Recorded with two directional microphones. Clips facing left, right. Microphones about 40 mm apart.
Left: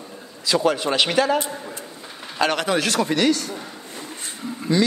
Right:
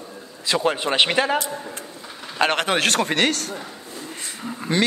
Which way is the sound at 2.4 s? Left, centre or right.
Right.